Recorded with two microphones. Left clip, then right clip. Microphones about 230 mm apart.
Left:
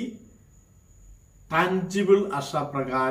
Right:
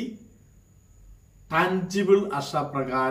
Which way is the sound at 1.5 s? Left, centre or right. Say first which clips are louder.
Even; centre.